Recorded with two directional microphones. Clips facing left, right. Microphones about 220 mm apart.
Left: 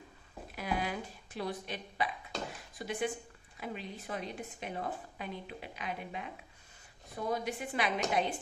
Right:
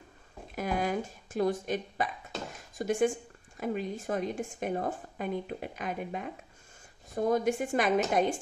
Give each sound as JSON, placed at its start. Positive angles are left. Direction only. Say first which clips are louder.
{"t": 0.6, "sound": "a woman's voice", "louder": "right 5 dB", "side_deg": -45}